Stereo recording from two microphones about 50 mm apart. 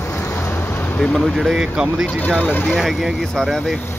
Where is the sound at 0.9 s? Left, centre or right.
Centre.